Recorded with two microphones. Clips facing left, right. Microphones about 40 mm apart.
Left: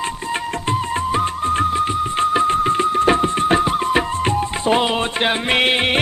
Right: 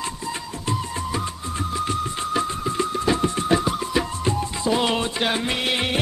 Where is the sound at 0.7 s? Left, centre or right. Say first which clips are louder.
Left 6 dB; left.